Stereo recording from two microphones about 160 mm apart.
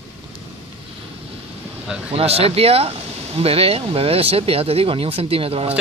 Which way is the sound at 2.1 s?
40° right (ahead or behind).